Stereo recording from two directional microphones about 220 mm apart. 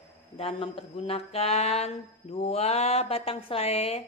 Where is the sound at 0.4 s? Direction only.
25° left (ahead or behind).